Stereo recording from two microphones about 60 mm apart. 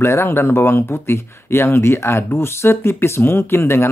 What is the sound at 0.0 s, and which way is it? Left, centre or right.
Speech, left.